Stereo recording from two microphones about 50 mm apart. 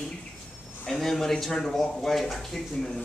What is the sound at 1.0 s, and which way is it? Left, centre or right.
Speech, centre.